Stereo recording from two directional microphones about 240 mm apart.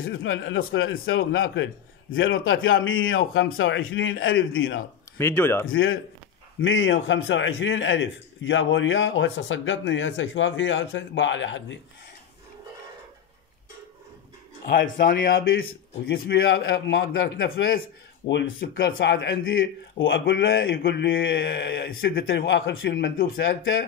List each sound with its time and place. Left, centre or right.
0.0 s speech: left
5.2 s speech: centre
5.7 s a man's voice: left
14.7 s a man's voice: left
20.7 s a man's voice: left